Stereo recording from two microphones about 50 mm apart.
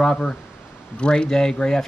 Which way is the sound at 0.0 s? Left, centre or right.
Centre.